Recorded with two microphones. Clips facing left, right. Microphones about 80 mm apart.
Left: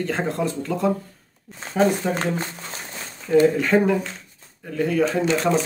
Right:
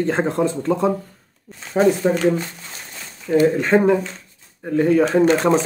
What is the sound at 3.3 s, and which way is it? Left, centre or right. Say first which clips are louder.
Speech: right 1 dB; right.